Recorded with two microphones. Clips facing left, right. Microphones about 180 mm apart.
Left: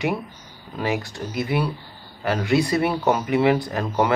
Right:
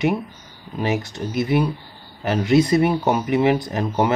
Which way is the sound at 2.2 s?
20° right (ahead or behind).